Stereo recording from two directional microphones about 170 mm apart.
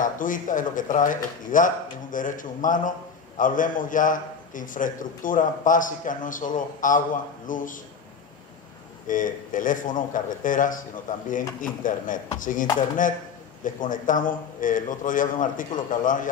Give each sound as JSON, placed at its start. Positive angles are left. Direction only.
{"t": 0.0, "sound": "a man's voice", "side_deg": 50}
{"t": 9.0, "sound": "a man's voice", "side_deg": 50}
{"t": 13.7, "sound": "a man's voice", "side_deg": 50}